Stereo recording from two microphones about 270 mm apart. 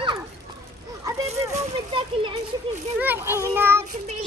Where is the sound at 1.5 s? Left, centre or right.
Centre.